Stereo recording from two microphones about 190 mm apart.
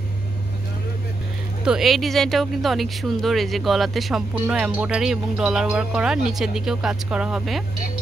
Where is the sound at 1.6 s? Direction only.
5° right (ahead or behind).